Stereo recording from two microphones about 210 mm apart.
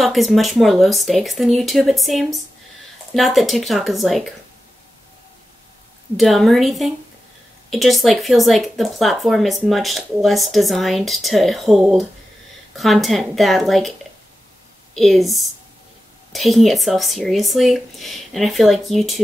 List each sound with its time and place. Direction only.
0.0 s a woman's voice: centre (ahead or behind)
6.1 s a woman's voice: centre (ahead or behind)
15.0 s a woman's voice: centre (ahead or behind)